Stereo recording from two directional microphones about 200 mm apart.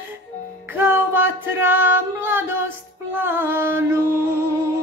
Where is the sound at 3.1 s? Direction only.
10° right (ahead or behind).